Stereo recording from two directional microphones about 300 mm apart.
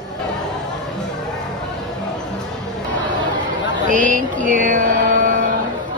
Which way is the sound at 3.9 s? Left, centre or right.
Right.